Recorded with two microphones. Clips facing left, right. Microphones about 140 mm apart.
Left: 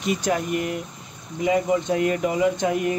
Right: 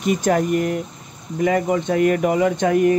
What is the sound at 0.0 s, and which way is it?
Speech, 50° right (ahead or behind).